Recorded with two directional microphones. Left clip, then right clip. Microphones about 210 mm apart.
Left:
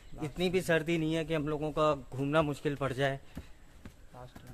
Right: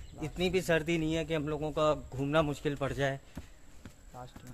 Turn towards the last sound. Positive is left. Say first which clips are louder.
# left 1 dB
turn(degrees=5)  # may be behind; listen again after turning